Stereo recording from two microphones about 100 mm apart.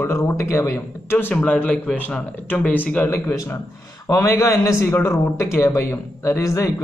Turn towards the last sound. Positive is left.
turn(degrees=30)  # may be behind; listen again after turning